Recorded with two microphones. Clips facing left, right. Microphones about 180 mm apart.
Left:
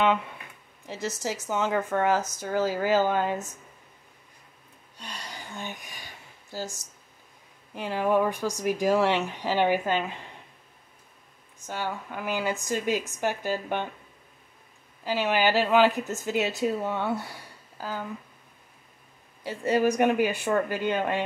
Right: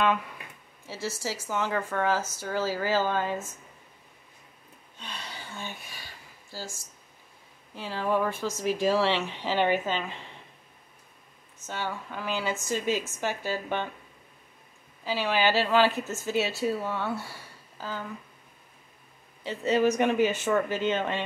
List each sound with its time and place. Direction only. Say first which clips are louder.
0.8 s speech: left 2 dB; 20° left (ahead or behind)
5.0 s a sound: left 1 dB; 15° left (ahead or behind)
7.7 s speech: left 4 dB; 15° left (ahead or behind)
11.6 s speech: left 2 dB; 15° left (ahead or behind)
15.0 s speech: left 2 dB; 15° left (ahead or behind)
17.2 s a sound: left 2 dB; 15° left (ahead or behind)
19.4 s speech: even; 10° left (ahead or behind)